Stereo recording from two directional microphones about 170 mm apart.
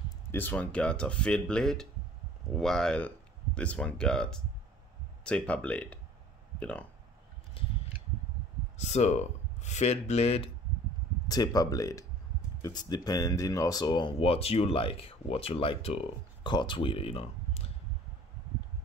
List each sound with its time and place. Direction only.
0.3 s speech: 10° left (ahead or behind)
8.7 s speech: 40° left (ahead or behind)
11.2 s speech: 20° left (ahead or behind)